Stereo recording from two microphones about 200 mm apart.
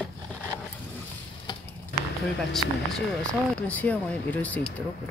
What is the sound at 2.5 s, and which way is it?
Speech, centre (ahead or behind).